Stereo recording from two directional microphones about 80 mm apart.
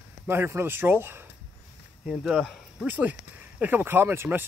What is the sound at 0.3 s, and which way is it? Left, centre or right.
Speech, right.